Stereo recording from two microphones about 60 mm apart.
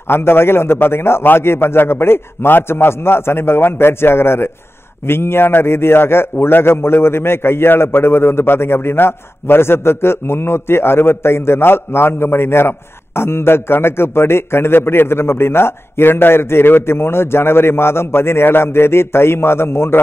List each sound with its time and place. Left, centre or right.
0.0 s a man's voice: left